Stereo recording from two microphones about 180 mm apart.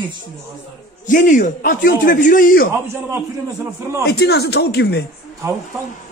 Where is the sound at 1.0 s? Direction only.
45° left (ahead or behind).